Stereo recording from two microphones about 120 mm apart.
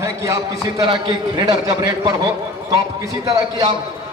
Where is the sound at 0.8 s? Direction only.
35° right (ahead or behind).